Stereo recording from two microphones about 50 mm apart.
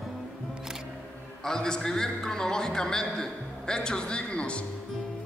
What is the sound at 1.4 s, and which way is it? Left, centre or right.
A man's voice, centre.